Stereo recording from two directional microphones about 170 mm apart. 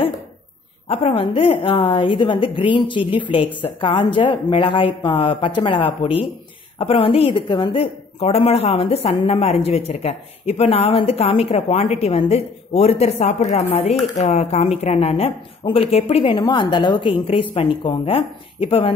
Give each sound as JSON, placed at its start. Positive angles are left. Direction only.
{"t": 0.8, "sound": "a woman's voice", "side_deg": 35}